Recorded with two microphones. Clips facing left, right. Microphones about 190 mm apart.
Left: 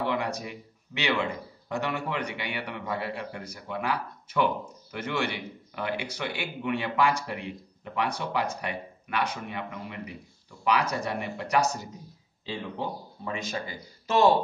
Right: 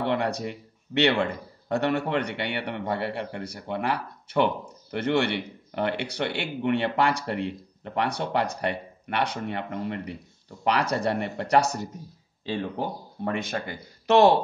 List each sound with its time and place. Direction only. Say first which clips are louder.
0.0 s a man's voice: right 3 dB; 65° right (ahead or behind)